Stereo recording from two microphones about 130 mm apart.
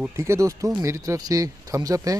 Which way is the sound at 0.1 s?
20° right (ahead or behind).